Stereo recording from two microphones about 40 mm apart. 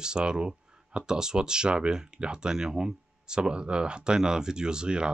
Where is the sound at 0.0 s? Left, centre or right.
Right.